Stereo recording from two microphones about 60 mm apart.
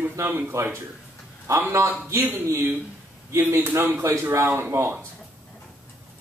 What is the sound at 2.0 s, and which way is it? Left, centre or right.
Speech, right.